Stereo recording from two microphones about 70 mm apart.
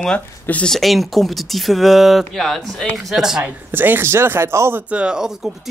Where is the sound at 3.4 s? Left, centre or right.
Right.